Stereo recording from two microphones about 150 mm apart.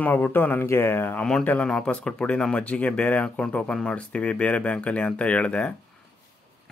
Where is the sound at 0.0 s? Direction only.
10° left (ahead or behind).